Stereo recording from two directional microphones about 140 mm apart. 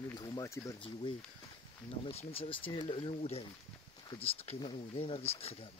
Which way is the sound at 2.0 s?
45° left (ahead or behind).